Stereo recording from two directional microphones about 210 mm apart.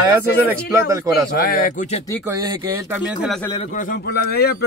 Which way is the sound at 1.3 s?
45° left (ahead or behind).